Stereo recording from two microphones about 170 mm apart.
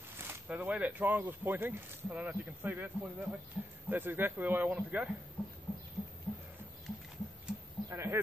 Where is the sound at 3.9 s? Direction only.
10° right (ahead or behind).